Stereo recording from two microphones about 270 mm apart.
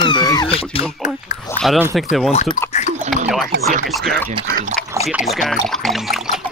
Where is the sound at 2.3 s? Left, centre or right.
Left.